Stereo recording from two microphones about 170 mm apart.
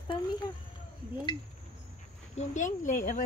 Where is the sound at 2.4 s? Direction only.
45° left (ahead or behind).